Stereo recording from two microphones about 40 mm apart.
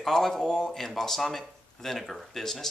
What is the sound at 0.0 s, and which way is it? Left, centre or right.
Speech, centre.